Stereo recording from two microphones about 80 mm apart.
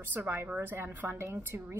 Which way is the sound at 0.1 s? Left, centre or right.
Right.